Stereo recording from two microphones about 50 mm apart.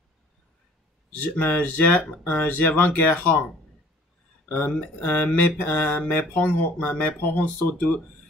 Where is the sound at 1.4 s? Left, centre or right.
Left.